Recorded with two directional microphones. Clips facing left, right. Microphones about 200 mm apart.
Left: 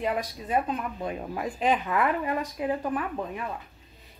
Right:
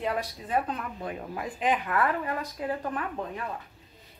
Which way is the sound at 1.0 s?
25° left (ahead or behind).